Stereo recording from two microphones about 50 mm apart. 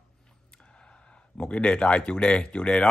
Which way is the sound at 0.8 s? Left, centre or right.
Centre.